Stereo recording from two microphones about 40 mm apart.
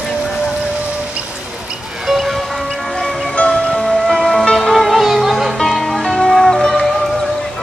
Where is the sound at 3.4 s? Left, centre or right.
Left.